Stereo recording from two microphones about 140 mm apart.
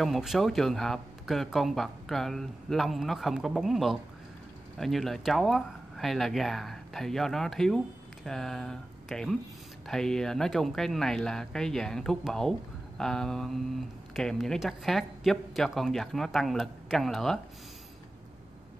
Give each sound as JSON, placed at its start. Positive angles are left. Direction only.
{"t": 0.0, "sound": "speech", "side_deg": 0}